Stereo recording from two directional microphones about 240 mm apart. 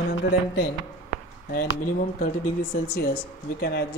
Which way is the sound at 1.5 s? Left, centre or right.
Left.